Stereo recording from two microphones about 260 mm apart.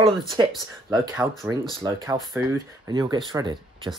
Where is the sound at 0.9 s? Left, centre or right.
Centre.